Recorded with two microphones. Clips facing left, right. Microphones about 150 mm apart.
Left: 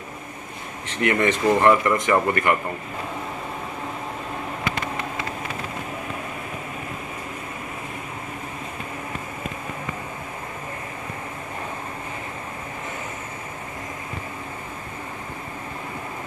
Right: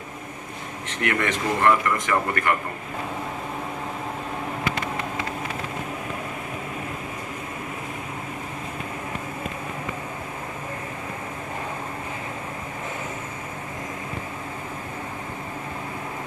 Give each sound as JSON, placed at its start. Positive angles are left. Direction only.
{"t": 1.0, "sound": "speech", "side_deg": 25}